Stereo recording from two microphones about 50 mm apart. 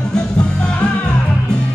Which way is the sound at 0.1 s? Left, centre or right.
Centre.